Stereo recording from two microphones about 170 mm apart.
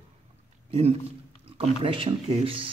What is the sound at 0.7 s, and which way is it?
Speech, 35° right (ahead or behind).